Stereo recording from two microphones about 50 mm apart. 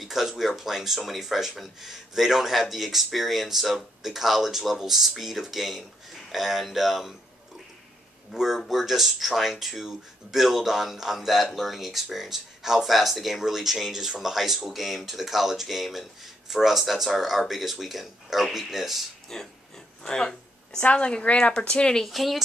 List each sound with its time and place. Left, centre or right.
0.0 s speech: centre
8.3 s speech: centre
20.0 s a sound: centre
20.8 s a woman's voice: left
22.0 s speech: centre